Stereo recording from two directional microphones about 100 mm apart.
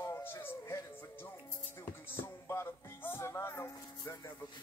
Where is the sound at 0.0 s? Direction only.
25° left (ahead or behind).